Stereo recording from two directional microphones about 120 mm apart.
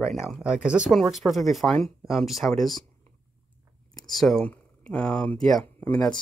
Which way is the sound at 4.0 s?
5° left (ahead or behind).